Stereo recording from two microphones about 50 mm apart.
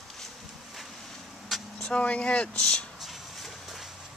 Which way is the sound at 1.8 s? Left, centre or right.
Left.